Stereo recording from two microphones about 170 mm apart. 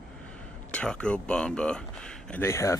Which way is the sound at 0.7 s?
5° left (ahead or behind).